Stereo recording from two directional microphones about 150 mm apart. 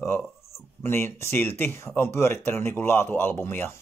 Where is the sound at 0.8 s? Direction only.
15° left (ahead or behind).